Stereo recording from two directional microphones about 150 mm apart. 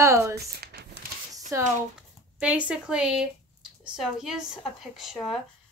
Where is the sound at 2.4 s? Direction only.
5° right (ahead or behind).